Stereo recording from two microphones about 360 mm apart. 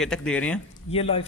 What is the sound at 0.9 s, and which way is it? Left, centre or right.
Speech, centre.